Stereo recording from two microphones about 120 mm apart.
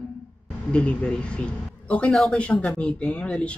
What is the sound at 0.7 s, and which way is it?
A man's voice, 10° left (ahead or behind).